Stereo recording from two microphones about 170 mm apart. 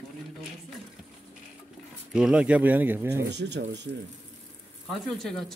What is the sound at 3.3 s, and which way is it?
Speech, 90° right.